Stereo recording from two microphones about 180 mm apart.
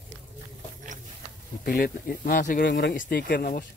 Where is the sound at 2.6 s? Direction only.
75° left (ahead or behind).